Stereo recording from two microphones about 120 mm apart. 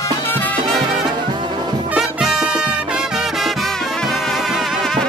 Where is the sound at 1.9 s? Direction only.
5° right (ahead or behind).